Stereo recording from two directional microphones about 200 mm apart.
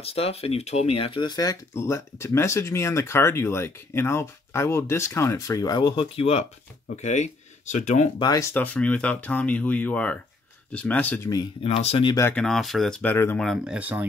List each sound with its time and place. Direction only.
0.0 s speech: 30° left (ahead or behind)
8.2 s speech: 15° left (ahead or behind)
11.6 s speech: 30° left (ahead or behind)
12.3 s speech: 5° left (ahead or behind)